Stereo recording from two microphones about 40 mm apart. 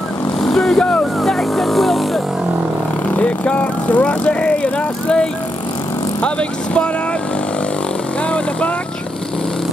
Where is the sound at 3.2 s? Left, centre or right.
Left.